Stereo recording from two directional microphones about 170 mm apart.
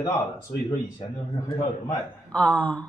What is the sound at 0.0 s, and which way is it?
Speech, 25° left (ahead or behind).